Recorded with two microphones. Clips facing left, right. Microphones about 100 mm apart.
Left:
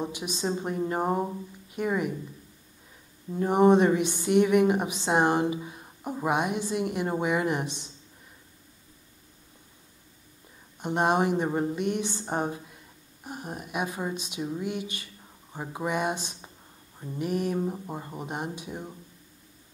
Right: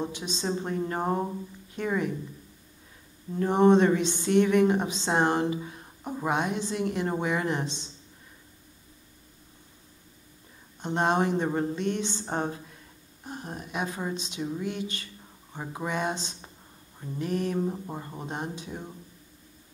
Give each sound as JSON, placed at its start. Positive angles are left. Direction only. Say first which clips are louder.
{"t": 0.0, "sound": "a woman's voice", "louder": "left 1 dB", "side_deg": 15}
{"t": 3.3, "sound": "a woman's voice", "louder": "even", "side_deg": 15}
{"t": 7.6, "sound": "speech", "louder": "right 1 dB", "side_deg": -25}
{"t": 10.8, "sound": "a woman's voice", "louder": "left 1 dB", "side_deg": 15}